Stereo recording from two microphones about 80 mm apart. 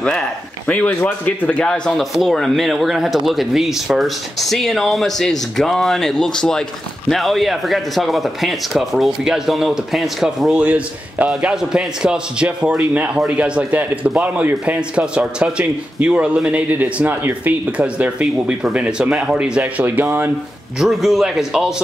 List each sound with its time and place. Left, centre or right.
0.0 s a man's voice: centre
2.0 s speech: centre
10.5 s a man's voice: centre
20.8 s speech: centre